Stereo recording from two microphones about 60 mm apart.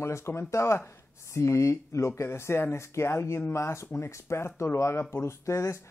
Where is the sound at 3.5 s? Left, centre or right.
Left.